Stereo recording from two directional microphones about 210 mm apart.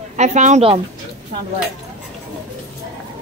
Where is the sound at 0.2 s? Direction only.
35° right (ahead or behind).